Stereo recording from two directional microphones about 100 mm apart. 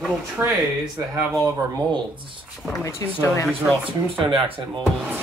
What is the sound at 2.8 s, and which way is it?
Speech, 30° left (ahead or behind).